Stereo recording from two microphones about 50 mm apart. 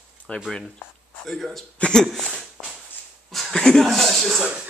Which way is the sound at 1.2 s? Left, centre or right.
Centre.